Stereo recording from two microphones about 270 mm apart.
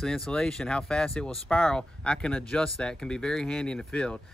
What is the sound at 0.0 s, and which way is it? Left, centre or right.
Speech, centre.